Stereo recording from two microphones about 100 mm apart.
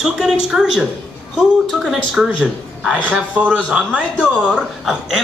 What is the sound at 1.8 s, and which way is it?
A man's voice, 5° right (ahead or behind).